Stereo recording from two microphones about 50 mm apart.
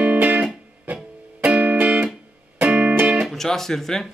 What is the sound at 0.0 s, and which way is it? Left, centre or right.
Music, right.